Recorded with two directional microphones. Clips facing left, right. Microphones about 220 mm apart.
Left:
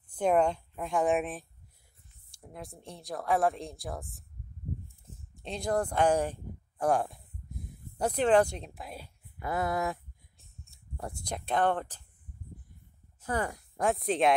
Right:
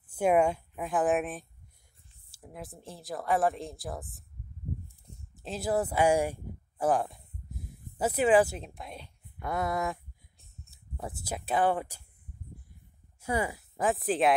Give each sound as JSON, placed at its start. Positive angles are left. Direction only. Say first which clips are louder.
{"t": 0.0, "sound": "a woman's voice", "louder": "right 1 dB", "side_deg": -10}
{"t": 13.2, "sound": "speech", "louder": "right 2 dB", "side_deg": -10}